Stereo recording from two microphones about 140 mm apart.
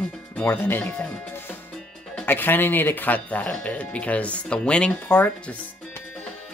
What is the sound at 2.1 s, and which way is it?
Speech, 15° left (ahead or behind).